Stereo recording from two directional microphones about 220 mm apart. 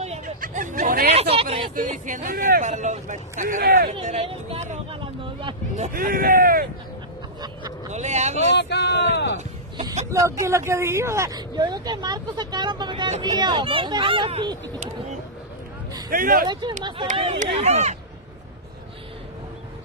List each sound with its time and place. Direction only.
0.0 s speech: 35° right (ahead or behind)
3.9 s speech: 30° right (ahead or behind)
5.4 s vehicle: 20° right (ahead or behind)
5.9 s speech: 40° right (ahead or behind)
7.9 s speech: 30° right (ahead or behind)
8.5 s speech: 50° left (ahead or behind)
9.8 s speech: 20° right (ahead or behind)
16.1 s speech: 40° right (ahead or behind)
17.2 s speech: 25° right (ahead or behind)